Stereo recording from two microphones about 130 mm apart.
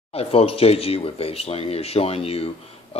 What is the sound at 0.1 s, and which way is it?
Speech, 50° left (ahead or behind).